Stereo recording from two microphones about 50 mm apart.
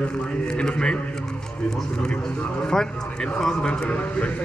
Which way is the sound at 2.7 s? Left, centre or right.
Centre.